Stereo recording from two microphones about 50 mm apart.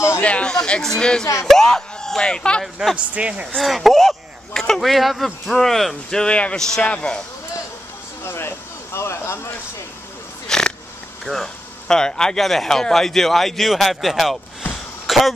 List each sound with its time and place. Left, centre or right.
0.2 s a sound: left
0.5 s speech: centre
2.6 s speech: centre
3.1 s speech: right
3.5 s speech: centre
6.0 s speech: centre
8.2 s speech: left
10.5 s a sound: centre
11.2 s speech: centre
15.0 s throat clearing: centre